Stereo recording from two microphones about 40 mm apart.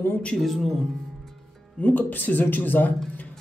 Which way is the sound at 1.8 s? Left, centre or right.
Left.